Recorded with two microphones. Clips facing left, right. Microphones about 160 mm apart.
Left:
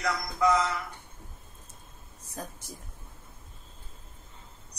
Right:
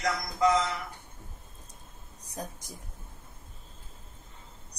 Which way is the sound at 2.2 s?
15° right (ahead or behind).